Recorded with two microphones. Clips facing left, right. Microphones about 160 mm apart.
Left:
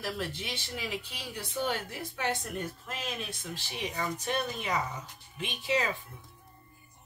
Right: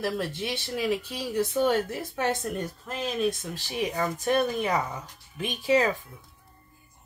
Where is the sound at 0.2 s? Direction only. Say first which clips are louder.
Right 6 dB; 50° right (ahead or behind).